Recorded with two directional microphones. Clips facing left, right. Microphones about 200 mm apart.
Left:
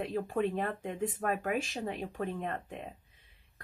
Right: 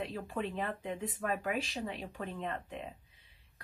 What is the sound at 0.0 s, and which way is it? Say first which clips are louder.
Speech: left 6 dB; 45° left (ahead or behind).